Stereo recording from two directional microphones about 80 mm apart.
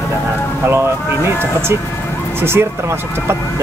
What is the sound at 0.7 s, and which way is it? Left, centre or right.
Speech, right.